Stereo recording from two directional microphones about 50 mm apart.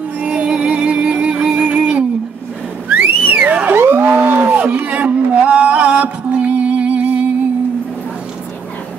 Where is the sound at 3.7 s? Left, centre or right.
Right.